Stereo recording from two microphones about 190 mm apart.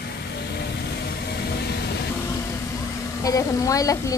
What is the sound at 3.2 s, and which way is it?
Speech, 15° left (ahead or behind).